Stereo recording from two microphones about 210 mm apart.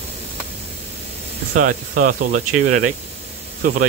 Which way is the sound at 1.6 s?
40° right (ahead or behind).